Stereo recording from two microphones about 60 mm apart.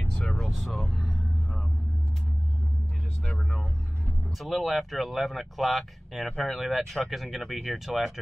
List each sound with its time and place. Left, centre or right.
0.3 s vehicle: centre
3.3 s vehicle: centre
4.4 s speech: centre